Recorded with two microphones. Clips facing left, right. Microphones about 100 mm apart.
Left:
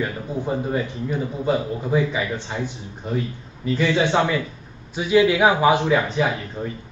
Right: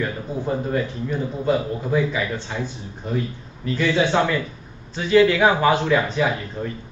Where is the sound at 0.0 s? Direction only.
15° left (ahead or behind).